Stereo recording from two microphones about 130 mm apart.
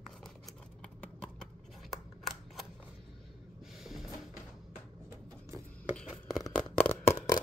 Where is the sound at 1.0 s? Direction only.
10° left (ahead or behind).